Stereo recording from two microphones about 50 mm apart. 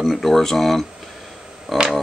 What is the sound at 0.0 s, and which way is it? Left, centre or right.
Speech, centre.